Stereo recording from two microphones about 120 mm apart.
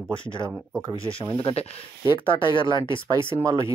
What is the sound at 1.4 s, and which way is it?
Speech, 50° left (ahead or behind).